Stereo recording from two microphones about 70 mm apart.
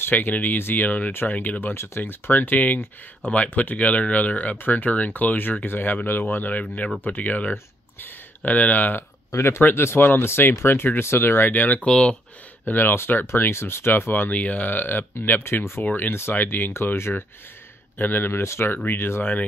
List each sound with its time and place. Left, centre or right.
0.0 s speech: left
9.3 s speech: left
11.9 s speech: centre
12.6 s speech: left
15.8 s speech: left